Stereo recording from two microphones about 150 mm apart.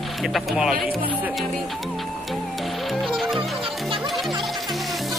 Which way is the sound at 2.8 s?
Centre (ahead or behind).